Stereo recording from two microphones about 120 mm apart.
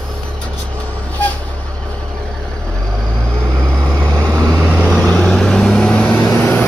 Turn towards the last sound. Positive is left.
turn(degrees=15)  # may be behind; listen again after turning